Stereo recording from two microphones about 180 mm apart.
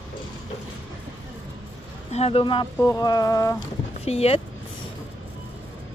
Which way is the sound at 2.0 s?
35° left (ahead or behind).